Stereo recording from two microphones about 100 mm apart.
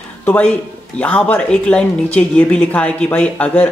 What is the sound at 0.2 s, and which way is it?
Music, 20° left (ahead or behind).